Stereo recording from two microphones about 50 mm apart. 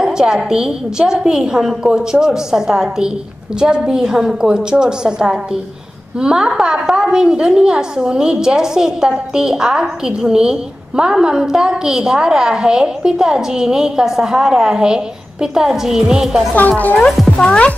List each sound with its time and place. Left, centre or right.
0.0 s a woman's voice: centre
16.5 s a woman's voice: left